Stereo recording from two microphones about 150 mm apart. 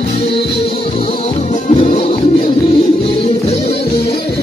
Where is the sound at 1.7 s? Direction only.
45° left (ahead or behind).